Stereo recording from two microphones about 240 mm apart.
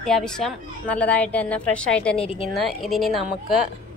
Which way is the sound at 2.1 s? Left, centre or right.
Left.